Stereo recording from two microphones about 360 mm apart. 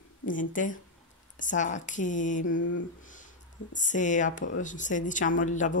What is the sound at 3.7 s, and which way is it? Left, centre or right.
Speech, left.